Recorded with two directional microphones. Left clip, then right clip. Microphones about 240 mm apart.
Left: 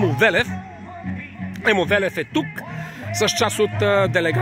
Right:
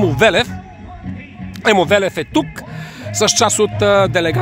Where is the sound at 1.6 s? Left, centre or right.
Centre.